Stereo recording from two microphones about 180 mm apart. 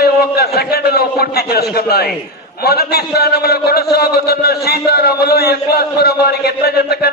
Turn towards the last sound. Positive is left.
turn(degrees=60)  # may be behind; listen again after turning